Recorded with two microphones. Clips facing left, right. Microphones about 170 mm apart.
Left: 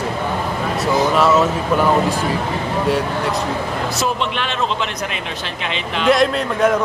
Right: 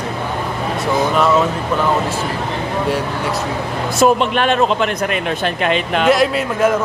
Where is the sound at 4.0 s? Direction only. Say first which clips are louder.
Right 12 dB; 50° right (ahead or behind).